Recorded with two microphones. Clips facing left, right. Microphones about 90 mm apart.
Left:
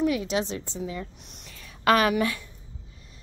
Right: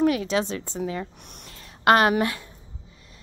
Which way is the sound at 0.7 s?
70° right (ahead or behind).